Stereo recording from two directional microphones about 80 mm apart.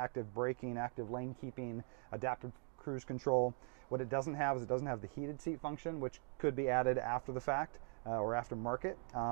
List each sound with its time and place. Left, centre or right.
0.0 s speech: centre
2.4 s speech: left
3.0 s speech: centre
3.9 s speech: left
8.5 s speech: left
8.8 s speech: centre